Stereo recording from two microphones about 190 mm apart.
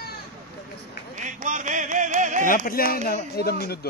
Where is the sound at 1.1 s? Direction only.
40° right (ahead or behind).